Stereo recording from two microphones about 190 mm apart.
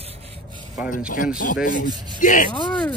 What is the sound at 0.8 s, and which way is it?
Speech, 45° left (ahead or behind).